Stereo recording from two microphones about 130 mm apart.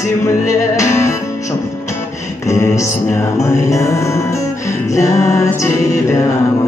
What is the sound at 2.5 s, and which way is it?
Music, 20° left (ahead or behind).